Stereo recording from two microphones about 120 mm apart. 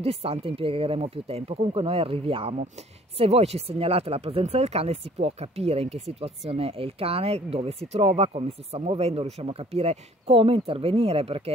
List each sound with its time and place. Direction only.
0.0 s speech: 55° right (ahead or behind)